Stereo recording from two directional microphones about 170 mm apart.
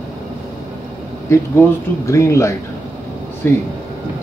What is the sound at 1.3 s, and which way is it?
Speech, 15° left (ahead or behind).